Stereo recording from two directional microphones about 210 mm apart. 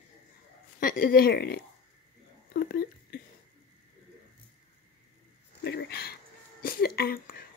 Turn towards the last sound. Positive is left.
turn(degrees=45)  # may be behind; listen again after turning